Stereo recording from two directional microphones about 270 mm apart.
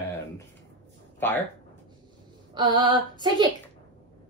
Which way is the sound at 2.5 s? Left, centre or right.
Centre.